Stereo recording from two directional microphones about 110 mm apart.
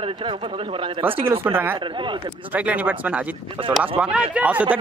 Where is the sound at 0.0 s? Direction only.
50° right (ahead or behind).